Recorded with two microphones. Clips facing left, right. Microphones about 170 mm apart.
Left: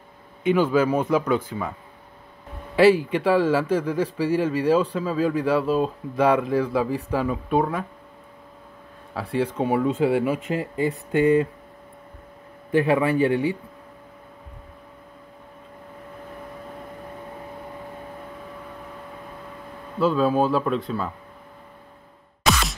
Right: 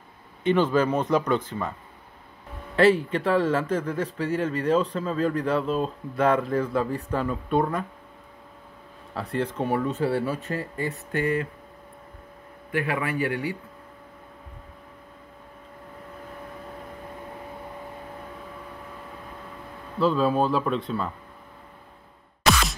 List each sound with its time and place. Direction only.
0.4 s a man's voice: 10° left (ahead or behind)
2.7 s a man's voice: 10° left (ahead or behind)
9.1 s a man's voice: 10° left (ahead or behind)
12.7 s speech: 25° left (ahead or behind)
20.0 s speech: centre (ahead or behind)
22.4 s music: centre (ahead or behind)